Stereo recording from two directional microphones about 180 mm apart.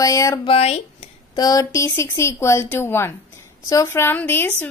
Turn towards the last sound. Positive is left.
turn(degrees=10)  # may be behind; listen again after turning